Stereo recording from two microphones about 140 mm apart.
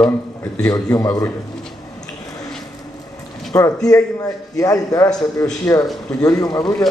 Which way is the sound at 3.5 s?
20° left (ahead or behind).